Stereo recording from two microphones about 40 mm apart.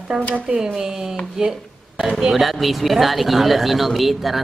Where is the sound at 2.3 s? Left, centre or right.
Centre.